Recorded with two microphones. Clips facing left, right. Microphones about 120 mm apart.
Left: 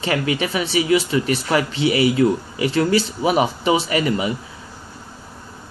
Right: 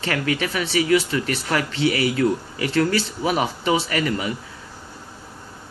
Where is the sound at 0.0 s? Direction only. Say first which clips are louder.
Left 2 dB; 15° left (ahead or behind).